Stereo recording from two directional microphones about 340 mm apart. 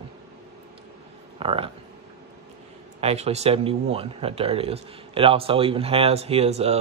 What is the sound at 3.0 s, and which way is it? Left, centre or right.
Speech, centre.